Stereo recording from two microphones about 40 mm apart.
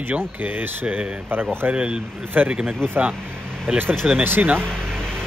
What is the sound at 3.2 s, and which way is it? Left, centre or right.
Vehicle, left.